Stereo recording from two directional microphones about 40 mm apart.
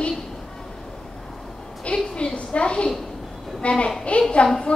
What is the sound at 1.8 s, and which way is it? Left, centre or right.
A woman's voice, left.